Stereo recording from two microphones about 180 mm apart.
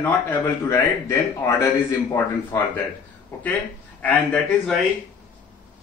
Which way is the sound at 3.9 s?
10° left (ahead or behind).